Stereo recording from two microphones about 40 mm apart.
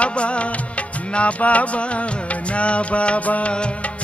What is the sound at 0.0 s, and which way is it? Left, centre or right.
Music, left.